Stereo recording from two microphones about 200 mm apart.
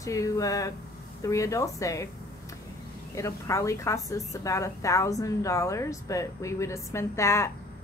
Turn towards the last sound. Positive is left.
turn(degrees=15)  # may be behind; listen again after turning